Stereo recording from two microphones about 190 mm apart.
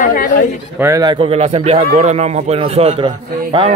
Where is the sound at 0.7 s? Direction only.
15° right (ahead or behind).